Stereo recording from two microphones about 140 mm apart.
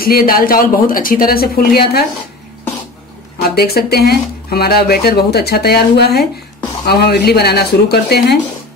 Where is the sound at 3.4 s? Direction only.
90° left.